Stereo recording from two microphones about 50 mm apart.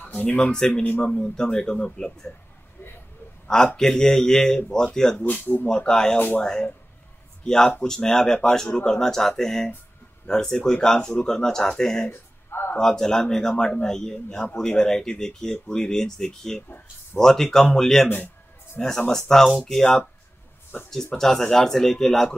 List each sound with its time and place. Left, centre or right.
0.0 s speech: left
0.5 s speech: centre
3.4 s speech: centre
5.2 s speech: left
5.7 s speech: centre
6.1 s speech: left
6.4 s speech: centre
12.4 s a sound: left
12.7 s speech: centre
16.6 s speech: left
17.2 s speech: centre
18.0 s speech: left
18.8 s speech: centre
20.9 s speech: centre